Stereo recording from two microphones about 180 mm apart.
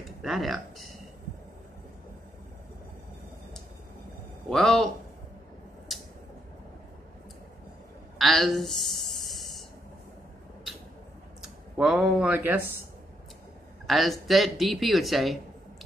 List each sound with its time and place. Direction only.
0.2 s speech: centre (ahead or behind)
4.5 s speech: centre (ahead or behind)
8.2 s a sound: centre (ahead or behind)
11.4 s speech: centre (ahead or behind)
13.8 s speech: centre (ahead or behind)